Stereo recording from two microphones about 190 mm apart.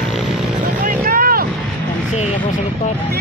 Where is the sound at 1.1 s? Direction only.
50° right (ahead or behind).